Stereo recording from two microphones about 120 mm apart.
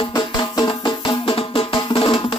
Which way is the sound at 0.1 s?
35° left (ahead or behind).